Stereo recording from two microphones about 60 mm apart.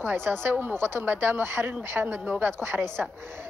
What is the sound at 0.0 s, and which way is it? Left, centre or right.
Speech, right.